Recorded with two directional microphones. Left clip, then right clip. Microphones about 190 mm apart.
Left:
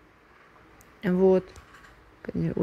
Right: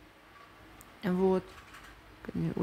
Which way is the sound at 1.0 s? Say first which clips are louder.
Left 7 dB; 15° left (ahead or behind).